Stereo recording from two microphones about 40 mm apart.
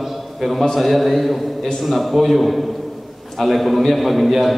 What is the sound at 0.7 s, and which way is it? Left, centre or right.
A man's voice, centre.